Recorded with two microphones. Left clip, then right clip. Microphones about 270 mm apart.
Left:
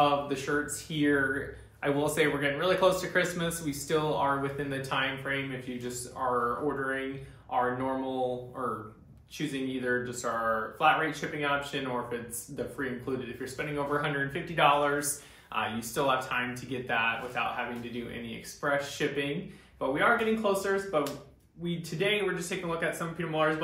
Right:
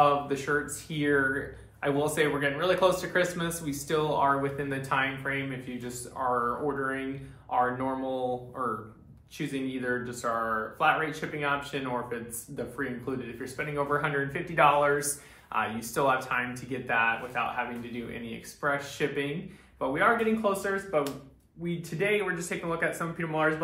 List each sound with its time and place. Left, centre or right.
0.0 s speech: centre